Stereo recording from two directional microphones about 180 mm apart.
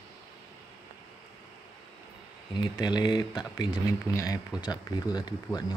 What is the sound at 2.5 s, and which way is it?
Speech, 25° left (ahead or behind).